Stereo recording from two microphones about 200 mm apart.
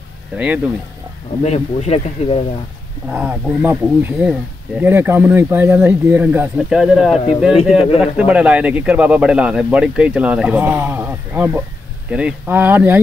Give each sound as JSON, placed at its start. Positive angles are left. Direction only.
{"t": 1.4, "sound": "speech", "side_deg": 35}
{"t": 3.1, "sound": "speech", "side_deg": -5}